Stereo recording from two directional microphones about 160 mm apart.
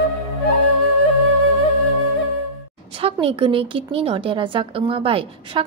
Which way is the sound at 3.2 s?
35° right (ahead or behind).